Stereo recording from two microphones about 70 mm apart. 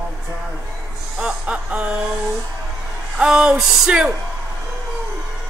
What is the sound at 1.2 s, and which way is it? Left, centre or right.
Speech, centre.